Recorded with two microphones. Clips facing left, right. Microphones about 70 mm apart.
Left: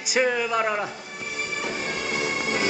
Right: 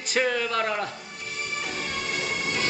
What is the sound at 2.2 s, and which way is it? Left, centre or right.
Music, centre.